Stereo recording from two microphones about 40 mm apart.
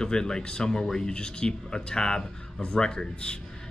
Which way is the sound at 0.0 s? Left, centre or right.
Centre.